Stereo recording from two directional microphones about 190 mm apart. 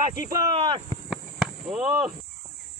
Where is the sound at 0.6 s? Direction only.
25° right (ahead or behind).